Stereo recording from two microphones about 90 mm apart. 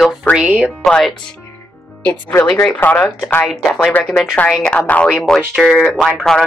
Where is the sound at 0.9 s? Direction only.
10° left (ahead or behind).